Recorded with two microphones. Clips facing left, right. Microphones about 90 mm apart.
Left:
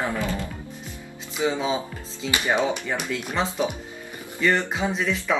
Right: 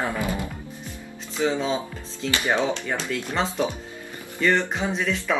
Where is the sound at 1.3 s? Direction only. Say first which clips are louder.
Even; 10° left (ahead or behind).